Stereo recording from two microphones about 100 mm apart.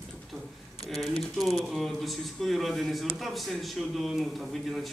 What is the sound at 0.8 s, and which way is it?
A man's voice, centre (ahead or behind).